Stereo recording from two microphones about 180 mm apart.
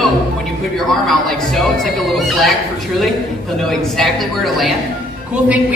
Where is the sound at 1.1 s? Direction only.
Centre (ahead or behind).